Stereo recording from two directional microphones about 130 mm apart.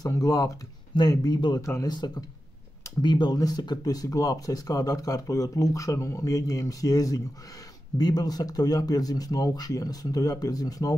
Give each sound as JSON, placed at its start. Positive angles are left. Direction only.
{"t": 0.0, "sound": "speech", "side_deg": 30}